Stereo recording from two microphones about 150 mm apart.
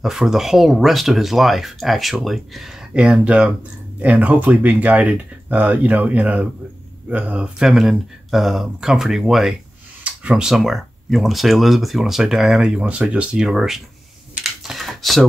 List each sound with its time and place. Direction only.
0.0 s speech: centre (ahead or behind)
14.3 s typing: centre (ahead or behind)